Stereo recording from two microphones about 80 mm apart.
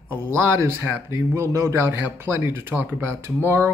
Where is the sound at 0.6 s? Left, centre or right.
Right.